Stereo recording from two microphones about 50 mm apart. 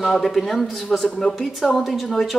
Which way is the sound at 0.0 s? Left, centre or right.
Centre.